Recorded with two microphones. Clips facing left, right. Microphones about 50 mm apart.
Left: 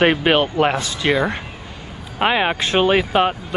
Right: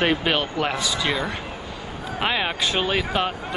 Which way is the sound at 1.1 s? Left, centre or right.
Left.